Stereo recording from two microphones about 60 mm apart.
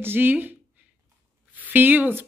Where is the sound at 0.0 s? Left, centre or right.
Right.